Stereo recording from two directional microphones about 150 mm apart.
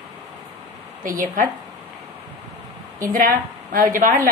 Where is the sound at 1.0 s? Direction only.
65° right (ahead or behind).